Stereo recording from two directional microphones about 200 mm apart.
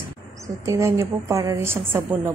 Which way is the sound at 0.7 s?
15° right (ahead or behind).